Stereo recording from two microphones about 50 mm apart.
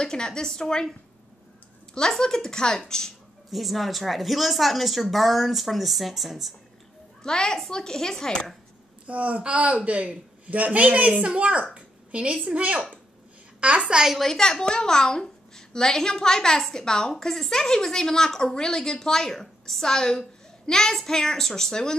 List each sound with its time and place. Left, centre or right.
0.0 s a child's voice: centre
2.0 s a child's voice: centre
3.4 s a woman's voice: centre
7.2 s a child's voice: centre
9.0 s a woman's voice: right
11.7 s a sound: right
12.4 s a woman's voice: right
13.9 s a woman's voice: centre
14.2 s a child's voice: centre